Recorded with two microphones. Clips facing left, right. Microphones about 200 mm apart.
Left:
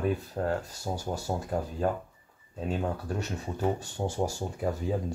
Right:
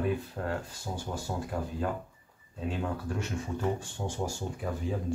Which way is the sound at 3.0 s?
35° left (ahead or behind).